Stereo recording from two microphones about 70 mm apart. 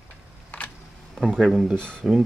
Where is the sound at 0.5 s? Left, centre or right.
Left.